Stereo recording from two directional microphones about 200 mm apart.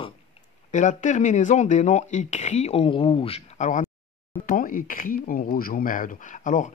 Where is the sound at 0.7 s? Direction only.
40° left (ahead or behind).